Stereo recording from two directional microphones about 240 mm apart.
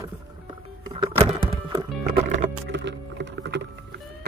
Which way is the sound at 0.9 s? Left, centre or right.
Centre.